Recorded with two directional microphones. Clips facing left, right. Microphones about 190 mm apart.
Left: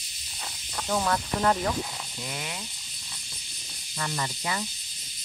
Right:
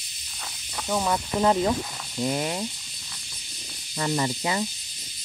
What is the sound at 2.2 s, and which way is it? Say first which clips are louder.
Speech: right 12 dB; 40° right (ahead or behind).